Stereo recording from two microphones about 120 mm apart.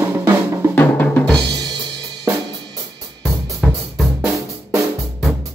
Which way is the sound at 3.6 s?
5° right (ahead or behind).